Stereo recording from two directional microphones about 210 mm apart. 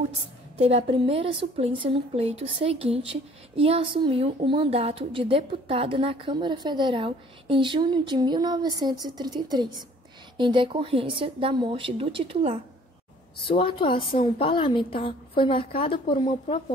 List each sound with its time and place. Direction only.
0.6 s a woman's voice: 30° right (ahead or behind)
13.4 s a woman's voice: 25° left (ahead or behind)